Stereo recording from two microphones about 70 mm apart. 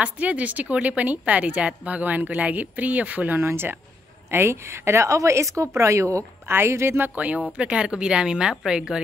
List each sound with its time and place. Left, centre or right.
0.0 s a woman's voice: centre
3.3 s a woman's voice: right
7.2 s a woman's voice: right